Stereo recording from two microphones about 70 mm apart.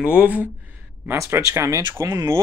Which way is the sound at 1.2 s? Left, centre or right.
Right.